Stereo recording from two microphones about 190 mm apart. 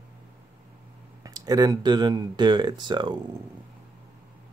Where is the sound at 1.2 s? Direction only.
20° right (ahead or behind).